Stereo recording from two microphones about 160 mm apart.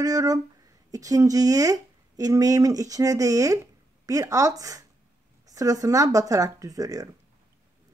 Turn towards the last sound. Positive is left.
turn(degrees=-20)  # may be behind; listen again after turning